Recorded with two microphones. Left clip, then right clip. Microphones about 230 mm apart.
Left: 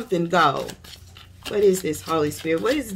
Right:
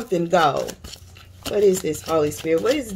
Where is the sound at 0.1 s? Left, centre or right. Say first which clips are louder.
Right 1 dB; left.